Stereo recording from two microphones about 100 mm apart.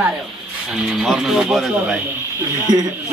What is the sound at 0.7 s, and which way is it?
Speech, 5° right (ahead or behind).